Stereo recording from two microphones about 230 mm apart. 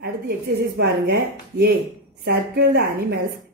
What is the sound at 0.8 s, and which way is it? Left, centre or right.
Speech, right.